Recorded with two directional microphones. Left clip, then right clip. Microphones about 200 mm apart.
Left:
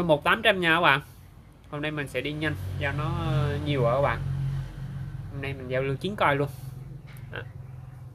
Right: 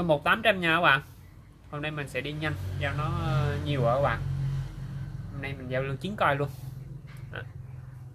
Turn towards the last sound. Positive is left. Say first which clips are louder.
# left 2 dB
turn(degrees=30)  # may be behind; listen again after turning